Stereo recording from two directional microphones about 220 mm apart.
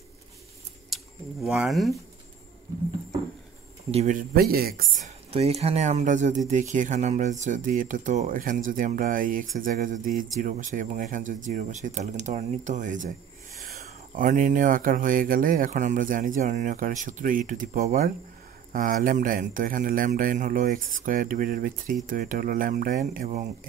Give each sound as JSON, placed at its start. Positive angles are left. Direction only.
{"t": 0.8, "sound": "speech", "side_deg": 0}
{"t": 3.9, "sound": "speech", "side_deg": -35}
{"t": 5.0, "sound": "speech", "side_deg": -30}